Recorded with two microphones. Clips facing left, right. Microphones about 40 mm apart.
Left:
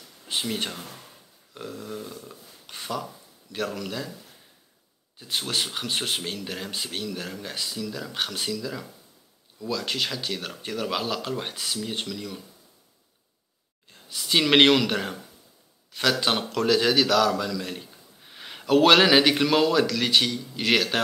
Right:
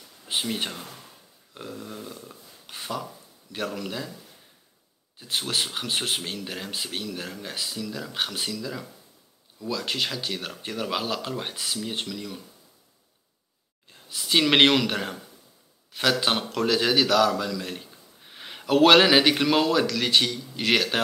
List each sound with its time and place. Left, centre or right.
0.2 s speech: centre
5.2 s a man's voice: centre
13.8 s a man's voice: centre